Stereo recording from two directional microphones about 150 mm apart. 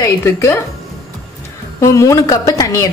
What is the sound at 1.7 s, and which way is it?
A woman's voice, 20° left (ahead or behind).